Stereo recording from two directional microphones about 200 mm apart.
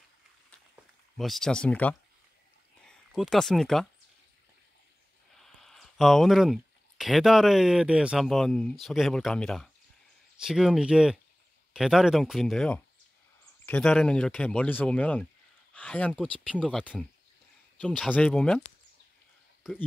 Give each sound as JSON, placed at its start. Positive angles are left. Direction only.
{"t": 1.1, "sound": "speech", "side_deg": 0}
{"t": 5.6, "sound": "speech", "side_deg": 0}